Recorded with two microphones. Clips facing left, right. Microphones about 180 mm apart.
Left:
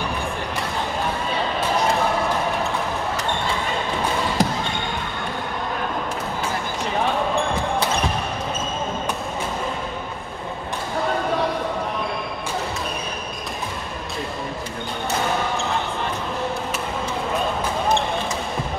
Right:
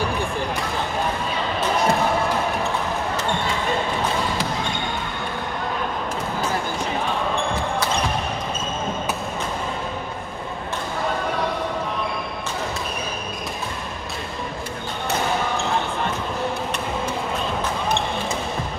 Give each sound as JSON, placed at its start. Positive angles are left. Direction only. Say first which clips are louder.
{"t": 4.4, "sound": "basketball bounce", "louder": "left 5 dB", "side_deg": 40}